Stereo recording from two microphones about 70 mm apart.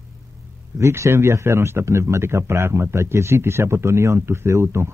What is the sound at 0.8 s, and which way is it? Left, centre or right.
Speech, right.